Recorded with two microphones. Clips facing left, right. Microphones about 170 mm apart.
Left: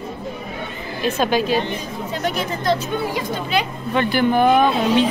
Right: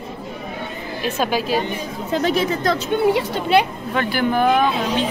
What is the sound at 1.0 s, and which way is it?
Speech, 5° right (ahead or behind).